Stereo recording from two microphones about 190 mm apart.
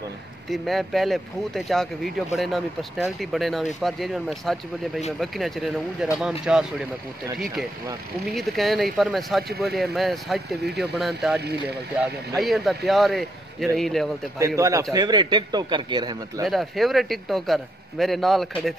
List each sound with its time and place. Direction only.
0.5 s a man's voice: centre (ahead or behind)
8.3 s a man's voice: centre (ahead or behind)
14.6 s a man's voice: 15° right (ahead or behind)
16.4 s a man's voice: centre (ahead or behind)